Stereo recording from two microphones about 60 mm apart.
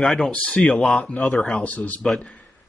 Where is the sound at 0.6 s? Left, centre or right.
Centre.